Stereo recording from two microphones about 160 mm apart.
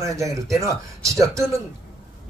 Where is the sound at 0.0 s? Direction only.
20° right (ahead or behind).